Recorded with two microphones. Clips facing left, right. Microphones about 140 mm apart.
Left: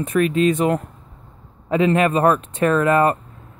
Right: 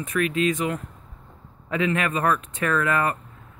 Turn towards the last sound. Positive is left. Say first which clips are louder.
# left 7 dB
turn(degrees=30)  # may be behind; listen again after turning